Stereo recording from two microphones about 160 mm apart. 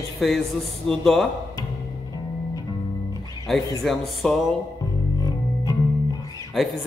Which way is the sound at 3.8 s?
Centre (ahead or behind).